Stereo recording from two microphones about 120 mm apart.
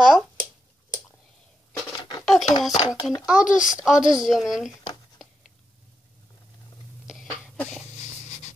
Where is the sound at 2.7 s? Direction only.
35° left (ahead or behind).